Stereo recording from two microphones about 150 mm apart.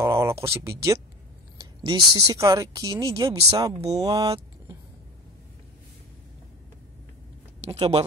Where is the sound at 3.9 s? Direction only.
25° right (ahead or behind).